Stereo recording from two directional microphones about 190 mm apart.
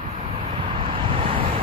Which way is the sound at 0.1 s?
35° right (ahead or behind).